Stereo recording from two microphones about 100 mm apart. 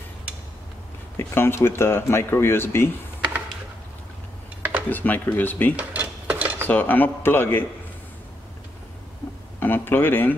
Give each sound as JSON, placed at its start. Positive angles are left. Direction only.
{"t": 1.1, "sound": "speech", "side_deg": 25}
{"t": 4.8, "sound": "speech", "side_deg": 20}
{"t": 5.8, "sound": "a sound", "side_deg": -15}
{"t": 6.7, "sound": "speech", "side_deg": 20}
{"t": 9.6, "sound": "speech", "side_deg": 20}